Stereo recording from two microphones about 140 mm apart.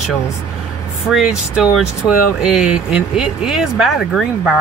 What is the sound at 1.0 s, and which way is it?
Speech, 5° right (ahead or behind).